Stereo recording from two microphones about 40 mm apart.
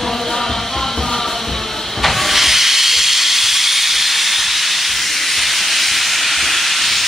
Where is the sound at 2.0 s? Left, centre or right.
Centre.